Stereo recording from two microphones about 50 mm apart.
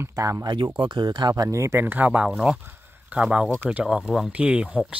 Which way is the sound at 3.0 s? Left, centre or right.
Right.